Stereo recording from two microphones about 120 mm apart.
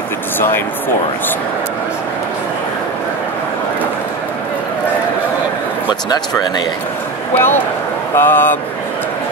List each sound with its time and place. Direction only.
6.0 s speech: 35° left (ahead or behind)
7.3 s speech: 15° left (ahead or behind)